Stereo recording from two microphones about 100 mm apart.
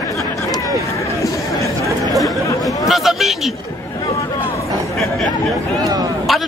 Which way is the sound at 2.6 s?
Centre (ahead or behind).